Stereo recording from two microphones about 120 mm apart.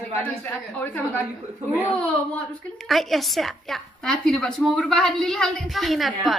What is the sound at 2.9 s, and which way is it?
A woman's voice, centre (ahead or behind).